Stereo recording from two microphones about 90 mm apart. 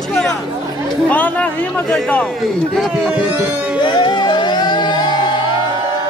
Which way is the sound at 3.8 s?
60° left (ahead or behind).